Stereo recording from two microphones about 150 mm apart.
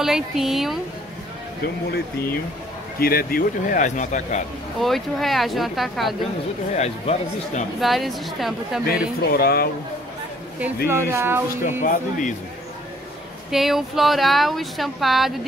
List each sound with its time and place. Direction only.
0.0 s speech: centre (ahead or behind)
1.6 s speech: 90° left; by 4.4 s 55° left (ahead or behind)
4.7 s speech: centre (ahead or behind)
6.7 s speech: 50° left (ahead or behind)
7.8 s speech: centre (ahead or behind)
9.3 s speech: 90° left
10.9 s speech: 15° right (ahead or behind)
11.8 s speech: 60° left (ahead or behind)
13.5 s speech: centre (ahead or behind)